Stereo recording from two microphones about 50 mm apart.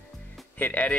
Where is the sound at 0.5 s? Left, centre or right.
Left.